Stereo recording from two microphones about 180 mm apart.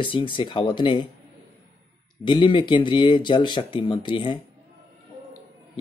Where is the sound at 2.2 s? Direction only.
25° left (ahead or behind).